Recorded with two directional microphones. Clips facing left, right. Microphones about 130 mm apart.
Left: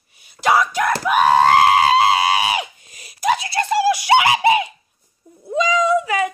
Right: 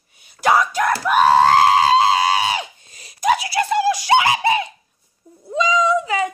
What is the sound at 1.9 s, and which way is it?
Screaming, 5° left (ahead or behind).